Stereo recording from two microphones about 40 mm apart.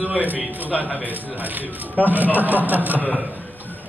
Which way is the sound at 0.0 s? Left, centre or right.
Right.